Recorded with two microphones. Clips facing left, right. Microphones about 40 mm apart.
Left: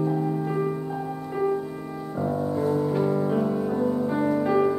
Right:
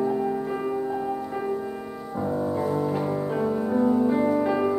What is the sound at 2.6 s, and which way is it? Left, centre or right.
Music, centre.